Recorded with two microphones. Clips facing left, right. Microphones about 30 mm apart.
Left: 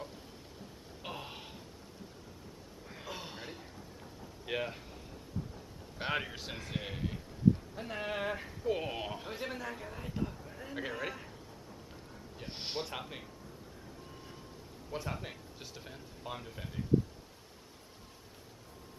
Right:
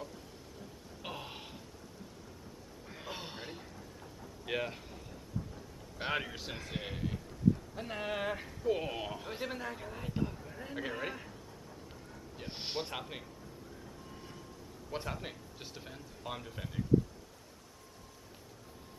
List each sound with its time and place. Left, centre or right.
1.0 s a sound: centre
3.1 s a sound: centre
5.9 s a man's voice: centre
12.4 s speech: centre
14.9 s speech: centre
15.2 s speech: centre